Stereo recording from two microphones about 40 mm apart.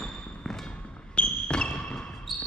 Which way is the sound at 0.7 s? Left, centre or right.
Left.